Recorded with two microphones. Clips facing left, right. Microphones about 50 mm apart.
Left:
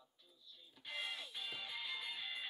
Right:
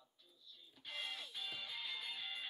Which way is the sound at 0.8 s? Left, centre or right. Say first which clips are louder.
Left 2 dB; centre.